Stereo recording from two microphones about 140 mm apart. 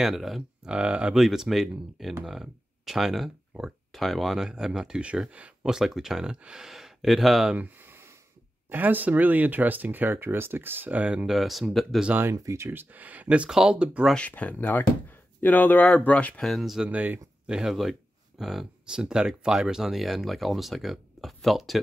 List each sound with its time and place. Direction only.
0.0 s speech: centre (ahead or behind)
7.8 s a sound: 20° right (ahead or behind)
8.6 s speech: 10° right (ahead or behind)
12.1 s speech: 15° right (ahead or behind)
14.1 s speech: 10° left (ahead or behind)